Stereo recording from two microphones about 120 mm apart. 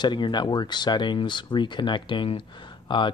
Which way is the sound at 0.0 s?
40° left (ahead or behind).